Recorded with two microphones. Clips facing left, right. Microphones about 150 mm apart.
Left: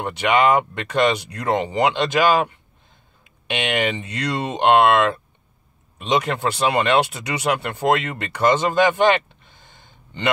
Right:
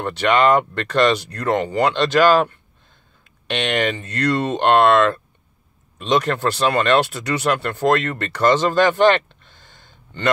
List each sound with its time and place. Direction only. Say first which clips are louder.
0.3 s speech: right 1 dB; 10° left (ahead or behind)
3.4 s speech: right 1 dB; 10° left (ahead or behind)